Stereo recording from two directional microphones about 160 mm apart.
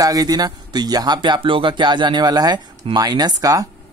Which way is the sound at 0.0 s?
25° right (ahead or behind).